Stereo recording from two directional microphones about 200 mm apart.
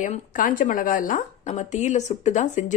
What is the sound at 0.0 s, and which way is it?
A woman's voice, 40° left (ahead or behind).